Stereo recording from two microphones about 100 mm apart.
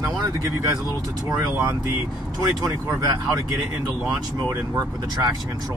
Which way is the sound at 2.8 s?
30° right (ahead or behind).